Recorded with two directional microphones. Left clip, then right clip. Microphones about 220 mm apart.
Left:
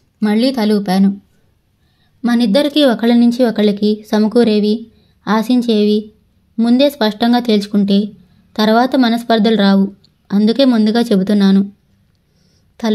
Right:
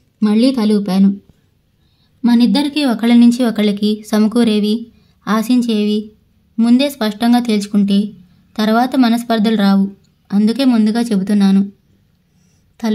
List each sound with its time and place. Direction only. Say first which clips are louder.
0.2 s a woman's voice: even; 20° left (ahead or behind)
2.2 s speech: left 1 dB; 15° left (ahead or behind)